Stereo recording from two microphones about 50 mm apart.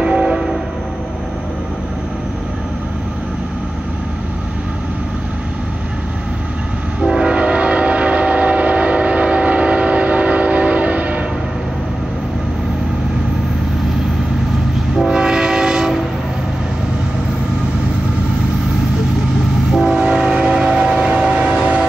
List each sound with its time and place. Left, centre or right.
0.0 s train: centre
7.0 s train: centre
15.0 s train: centre
19.8 s train: centre